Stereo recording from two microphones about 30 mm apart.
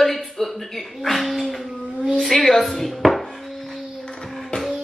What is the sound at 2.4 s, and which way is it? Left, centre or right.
Music, centre.